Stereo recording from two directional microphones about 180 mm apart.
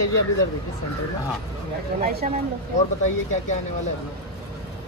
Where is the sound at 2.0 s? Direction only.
60° right (ahead or behind).